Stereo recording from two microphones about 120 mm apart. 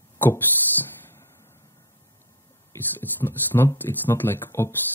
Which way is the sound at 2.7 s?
20° left (ahead or behind).